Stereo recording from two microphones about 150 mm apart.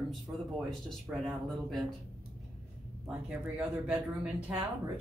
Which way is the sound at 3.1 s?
10° right (ahead or behind).